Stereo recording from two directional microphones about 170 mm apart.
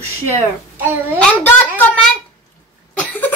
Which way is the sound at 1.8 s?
10° left (ahead or behind).